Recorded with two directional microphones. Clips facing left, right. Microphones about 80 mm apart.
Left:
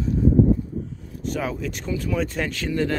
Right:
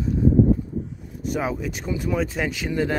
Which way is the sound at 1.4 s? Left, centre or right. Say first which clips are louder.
Right 2 dB; centre.